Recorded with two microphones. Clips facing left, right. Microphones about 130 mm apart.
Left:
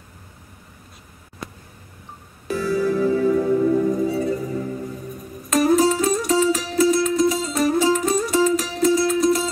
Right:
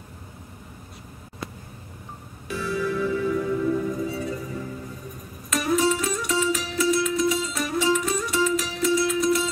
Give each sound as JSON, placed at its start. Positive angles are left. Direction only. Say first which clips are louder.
{"t": 2.4, "sound": "music", "louder": "left 6 dB", "side_deg": 40}